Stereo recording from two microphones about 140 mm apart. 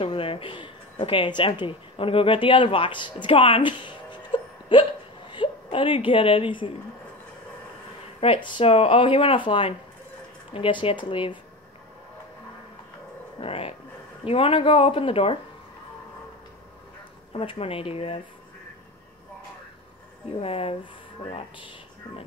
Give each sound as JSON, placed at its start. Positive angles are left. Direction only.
{"t": 0.0, "sound": "a woman's voice", "side_deg": 40}
{"t": 8.2, "sound": "speech", "side_deg": 40}
{"t": 13.4, "sound": "speech", "side_deg": 45}
{"t": 17.3, "sound": "speech", "side_deg": 45}
{"t": 20.3, "sound": "speech", "side_deg": 45}